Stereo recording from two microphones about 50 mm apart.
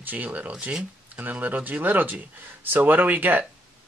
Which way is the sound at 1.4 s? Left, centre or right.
Right.